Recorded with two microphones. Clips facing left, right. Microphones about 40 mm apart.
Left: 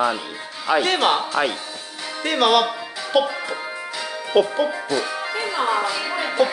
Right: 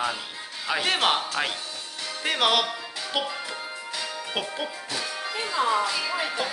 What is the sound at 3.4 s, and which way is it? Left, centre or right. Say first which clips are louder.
Music: left 6 dB; centre.